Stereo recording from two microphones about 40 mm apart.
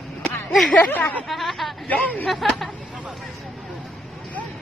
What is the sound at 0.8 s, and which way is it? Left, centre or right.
Speech, left.